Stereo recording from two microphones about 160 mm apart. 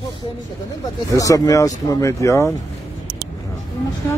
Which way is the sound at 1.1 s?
20° left (ahead or behind).